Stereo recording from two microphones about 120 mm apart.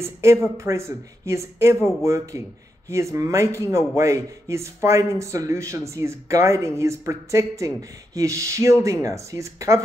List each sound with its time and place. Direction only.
0.0 s speech: 25° right (ahead or behind)